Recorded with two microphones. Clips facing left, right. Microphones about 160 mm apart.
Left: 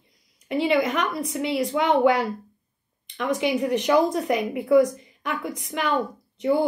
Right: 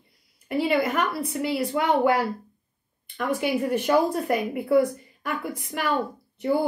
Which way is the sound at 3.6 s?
5° right (ahead or behind).